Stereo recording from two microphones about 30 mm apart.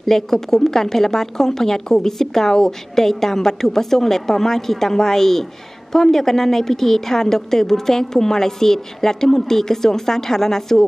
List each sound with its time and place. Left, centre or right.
0.0 s speech: centre